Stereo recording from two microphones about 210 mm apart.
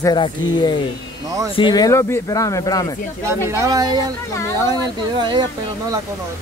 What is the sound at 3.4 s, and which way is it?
Speech, 15° right (ahead or behind).